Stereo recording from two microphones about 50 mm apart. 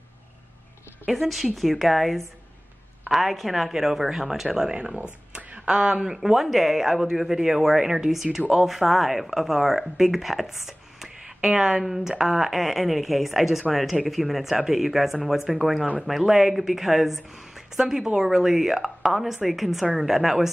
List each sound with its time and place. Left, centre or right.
1.1 s speech: centre